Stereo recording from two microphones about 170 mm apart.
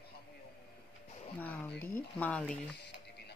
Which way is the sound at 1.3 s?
10° left (ahead or behind).